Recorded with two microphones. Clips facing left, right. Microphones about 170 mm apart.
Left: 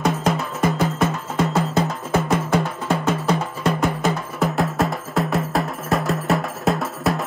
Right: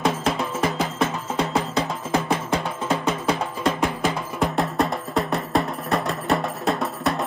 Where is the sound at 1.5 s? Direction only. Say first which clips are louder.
Left 4 dB; 50° left (ahead or behind).